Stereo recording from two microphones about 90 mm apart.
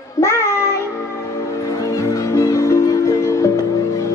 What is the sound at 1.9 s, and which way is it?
Music, 40° left (ahead or behind).